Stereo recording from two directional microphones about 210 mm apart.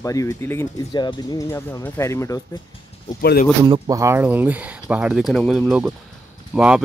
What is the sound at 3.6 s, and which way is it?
Speech, 20° right (ahead or behind).